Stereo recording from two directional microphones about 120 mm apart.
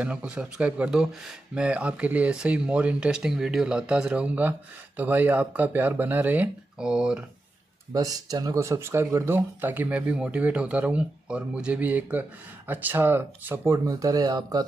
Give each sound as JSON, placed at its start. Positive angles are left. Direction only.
{"t": 0.0, "sound": "speech", "side_deg": -10}
{"t": 7.9, "sound": "speech", "side_deg": -30}
{"t": 13.8, "sound": "speech", "side_deg": -30}